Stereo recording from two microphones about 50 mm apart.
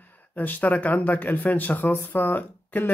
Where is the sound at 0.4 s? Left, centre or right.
Left.